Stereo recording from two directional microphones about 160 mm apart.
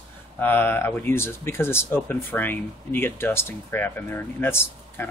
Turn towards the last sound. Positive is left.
turn(degrees=15)  # may be behind; listen again after turning